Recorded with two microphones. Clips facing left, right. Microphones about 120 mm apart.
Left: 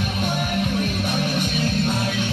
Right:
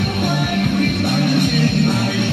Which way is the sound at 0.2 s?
60° right (ahead or behind).